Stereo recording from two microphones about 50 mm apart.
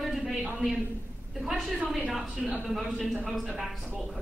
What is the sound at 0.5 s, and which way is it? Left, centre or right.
A woman's voice, centre.